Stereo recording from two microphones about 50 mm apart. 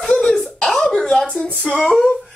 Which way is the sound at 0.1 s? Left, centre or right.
Centre.